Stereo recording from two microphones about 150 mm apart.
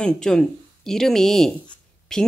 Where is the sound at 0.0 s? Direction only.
5° left (ahead or behind).